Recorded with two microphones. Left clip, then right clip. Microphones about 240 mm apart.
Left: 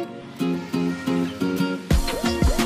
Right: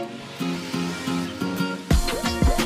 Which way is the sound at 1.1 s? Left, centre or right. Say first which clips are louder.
Left 3 dB; right.